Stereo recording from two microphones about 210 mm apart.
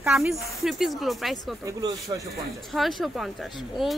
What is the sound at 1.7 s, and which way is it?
Speech, 15° right (ahead or behind).